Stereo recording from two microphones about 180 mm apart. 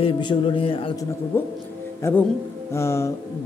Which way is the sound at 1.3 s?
15° left (ahead or behind).